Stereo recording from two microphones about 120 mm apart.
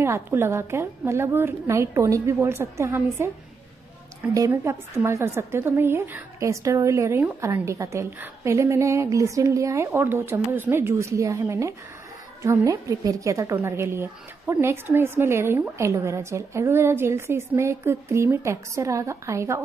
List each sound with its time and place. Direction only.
0.0 s a woman's voice: 20° right (ahead or behind)
4.3 s a woman's voice: 25° right (ahead or behind)